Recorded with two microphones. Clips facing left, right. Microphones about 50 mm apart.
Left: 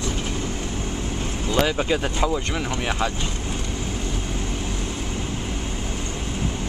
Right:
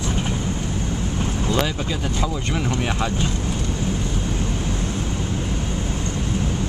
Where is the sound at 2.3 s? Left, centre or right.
Centre.